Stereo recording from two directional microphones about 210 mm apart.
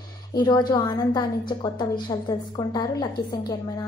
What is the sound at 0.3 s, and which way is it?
A woman's voice, 20° left (ahead or behind).